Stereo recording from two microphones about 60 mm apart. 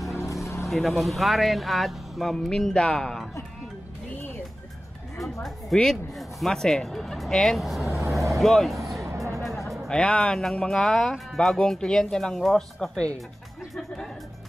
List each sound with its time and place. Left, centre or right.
0.2 s vehicle: left
0.7 s speech: centre
5.7 s speech: centre
9.0 s music: right
9.8 s speech: centre